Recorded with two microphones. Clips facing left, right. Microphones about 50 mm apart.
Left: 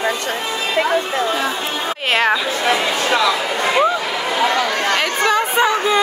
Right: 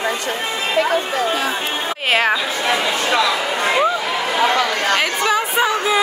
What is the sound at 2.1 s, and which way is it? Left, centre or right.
Speech, centre.